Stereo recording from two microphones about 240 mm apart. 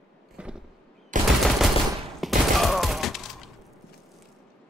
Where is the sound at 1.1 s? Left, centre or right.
Right.